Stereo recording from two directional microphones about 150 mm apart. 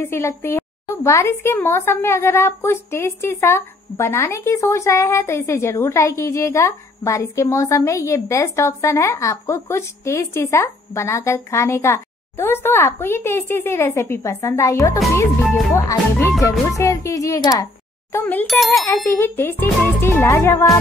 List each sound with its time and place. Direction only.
0.0 s a woman's voice: 20° left (ahead or behind)
18.1 s speech: 10° left (ahead or behind)
18.5 s a child's voice: centre (ahead or behind)
19.1 s speech: 15° left (ahead or behind)